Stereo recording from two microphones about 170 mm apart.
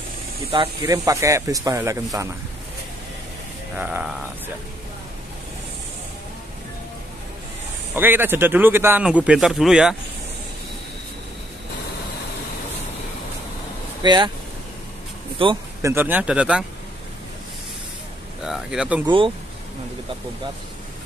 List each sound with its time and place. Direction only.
0.5 s speech: 30° right (ahead or behind)
3.7 s speech: 10° right (ahead or behind)
7.9 s speech: 10° right (ahead or behind)
14.0 s speech: 25° right (ahead or behind)
15.4 s speech: 30° right (ahead or behind)
15.8 s speech: 15° right (ahead or behind)
18.4 s speech: 5° right (ahead or behind)
19.0 s speech: 30° right (ahead or behind)